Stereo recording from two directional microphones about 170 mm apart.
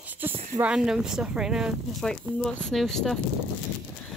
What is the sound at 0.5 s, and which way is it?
Speech, 5° right (ahead or behind).